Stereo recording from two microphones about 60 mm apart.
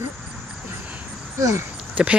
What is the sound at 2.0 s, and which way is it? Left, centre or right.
Speech, right.